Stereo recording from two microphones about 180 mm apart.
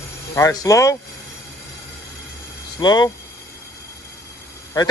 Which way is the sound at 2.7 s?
20° left (ahead or behind).